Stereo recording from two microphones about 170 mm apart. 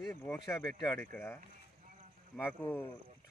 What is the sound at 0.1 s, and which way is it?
Speech, 15° left (ahead or behind).